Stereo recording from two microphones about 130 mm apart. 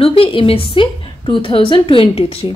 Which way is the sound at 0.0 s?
45° left (ahead or behind).